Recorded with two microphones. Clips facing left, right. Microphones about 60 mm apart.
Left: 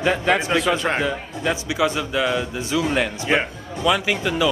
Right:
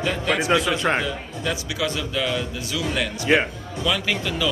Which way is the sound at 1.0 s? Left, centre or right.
Left.